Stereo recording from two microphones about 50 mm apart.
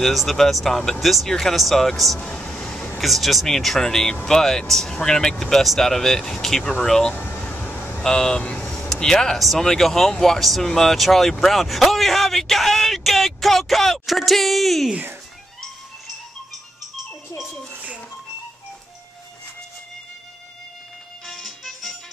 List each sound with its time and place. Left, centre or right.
0.0 s speech: centre
2.1 s speech: centre
3.0 s speech: centre
7.2 s vehicle: left
8.0 s speech: centre
8.5 s vehicle: left
8.7 s a sound: centre
9.4 s speech: centre
21.3 s music: centre